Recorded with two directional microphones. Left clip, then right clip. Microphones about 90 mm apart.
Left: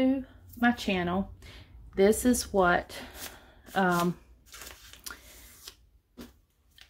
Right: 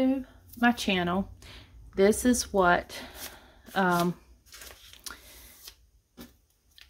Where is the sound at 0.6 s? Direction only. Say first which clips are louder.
Right 2 dB; 30° right (ahead or behind); by 3.2 s 10° right (ahead or behind).